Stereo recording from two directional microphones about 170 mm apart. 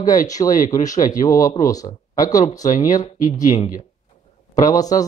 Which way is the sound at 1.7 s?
20° left (ahead or behind).